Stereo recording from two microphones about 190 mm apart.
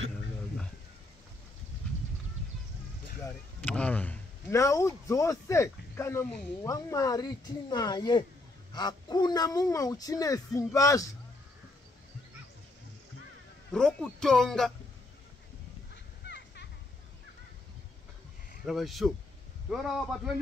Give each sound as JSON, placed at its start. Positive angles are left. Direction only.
{"t": 3.3, "sound": "a man's voice", "side_deg": 5}
{"t": 6.6, "sound": "speech", "side_deg": 15}
{"t": 13.7, "sound": "a man's voice", "side_deg": 5}
{"t": 15.9, "sound": "a sound", "side_deg": 60}
{"t": 18.7, "sound": "a man's voice", "side_deg": 0}